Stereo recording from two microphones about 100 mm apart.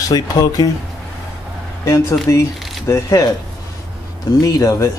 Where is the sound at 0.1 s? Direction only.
40° left (ahead or behind).